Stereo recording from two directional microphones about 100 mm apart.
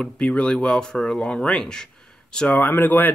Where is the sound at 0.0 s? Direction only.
10° left (ahead or behind).